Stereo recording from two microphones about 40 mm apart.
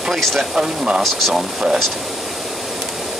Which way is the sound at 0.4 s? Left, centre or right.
Centre.